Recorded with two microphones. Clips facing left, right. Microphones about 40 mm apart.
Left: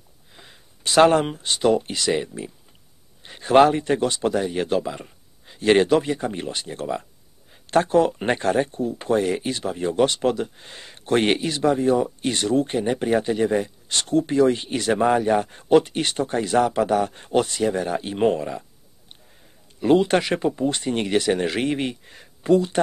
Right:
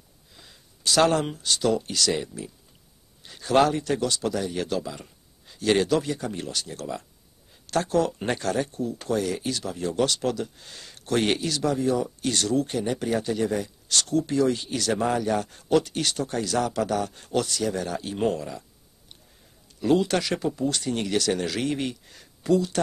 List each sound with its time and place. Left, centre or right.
0.4 s speech: left
19.8 s speech: left